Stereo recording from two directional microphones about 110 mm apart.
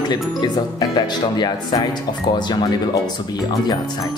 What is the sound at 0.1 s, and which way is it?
Speech, 40° left (ahead or behind).